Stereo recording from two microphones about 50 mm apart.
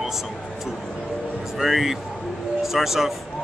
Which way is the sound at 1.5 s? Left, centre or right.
Centre.